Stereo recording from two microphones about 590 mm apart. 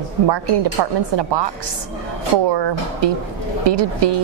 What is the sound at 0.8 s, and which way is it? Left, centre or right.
Speech, right.